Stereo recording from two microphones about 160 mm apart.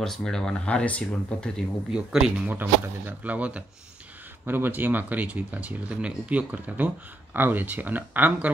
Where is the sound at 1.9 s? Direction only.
5° right (ahead or behind).